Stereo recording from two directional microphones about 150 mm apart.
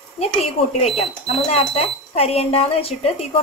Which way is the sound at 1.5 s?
40° left (ahead or behind).